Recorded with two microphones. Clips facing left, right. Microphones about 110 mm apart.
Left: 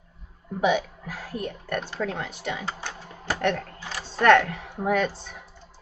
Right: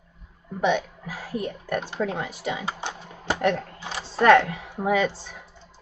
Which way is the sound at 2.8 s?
20° right (ahead or behind).